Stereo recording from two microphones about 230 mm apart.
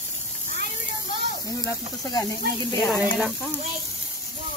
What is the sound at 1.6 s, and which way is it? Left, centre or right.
Speech, centre.